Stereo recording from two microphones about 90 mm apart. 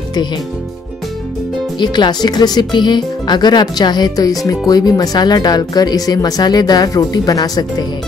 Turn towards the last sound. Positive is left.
turn(degrees=45)  # may be behind; listen again after turning